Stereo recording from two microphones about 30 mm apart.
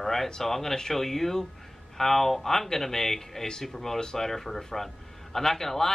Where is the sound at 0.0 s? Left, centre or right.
Centre.